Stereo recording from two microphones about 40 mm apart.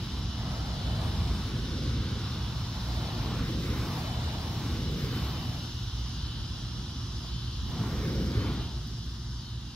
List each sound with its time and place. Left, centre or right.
1.1 s vehicle: centre
3.8 s vehicle: centre
4.9 s vehicle: left
8.0 s a sound: left